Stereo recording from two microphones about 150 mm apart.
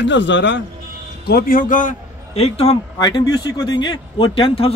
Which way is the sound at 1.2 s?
85° left.